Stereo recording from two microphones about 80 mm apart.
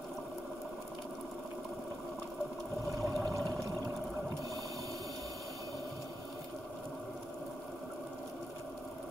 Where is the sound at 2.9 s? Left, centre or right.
Right.